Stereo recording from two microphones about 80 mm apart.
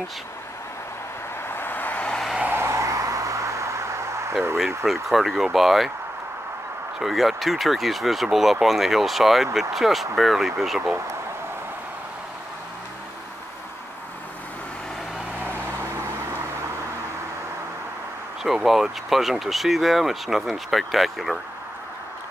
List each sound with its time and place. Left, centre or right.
1.5 s vehicle: left
2.5 s vehicle: right
4.6 s speech: centre
7.0 s speech: centre
18.4 s speech: centre